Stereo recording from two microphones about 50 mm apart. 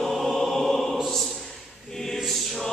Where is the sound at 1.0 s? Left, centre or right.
Centre.